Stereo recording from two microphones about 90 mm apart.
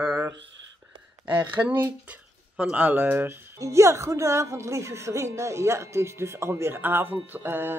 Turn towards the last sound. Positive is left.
turn(degrees=-25)  # may be behind; listen again after turning